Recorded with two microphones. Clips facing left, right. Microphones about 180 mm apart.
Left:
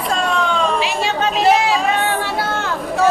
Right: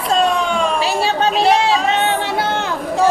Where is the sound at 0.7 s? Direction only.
35° right (ahead or behind).